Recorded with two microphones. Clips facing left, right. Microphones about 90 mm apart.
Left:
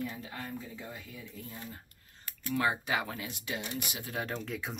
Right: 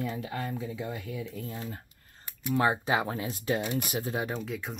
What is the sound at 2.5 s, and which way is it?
Speech, 30° right (ahead or behind).